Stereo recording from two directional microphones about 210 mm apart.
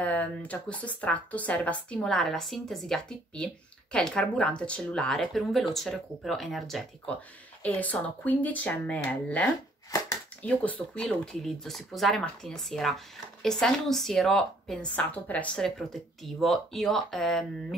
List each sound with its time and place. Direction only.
0.0 s speech: 5° left (ahead or behind)